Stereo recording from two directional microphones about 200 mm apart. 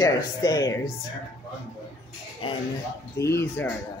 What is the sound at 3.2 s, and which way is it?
Speech, 15° left (ahead or behind).